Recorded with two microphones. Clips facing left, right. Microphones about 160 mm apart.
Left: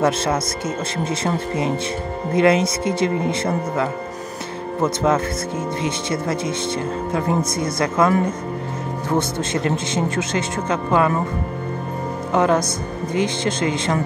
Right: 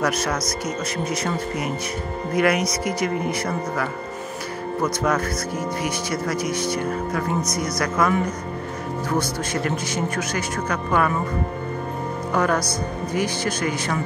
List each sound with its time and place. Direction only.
0.0 s speech: 25° left (ahead or behind)
9.1 s speech: 25° left (ahead or behind)
12.3 s speech: 20° left (ahead or behind)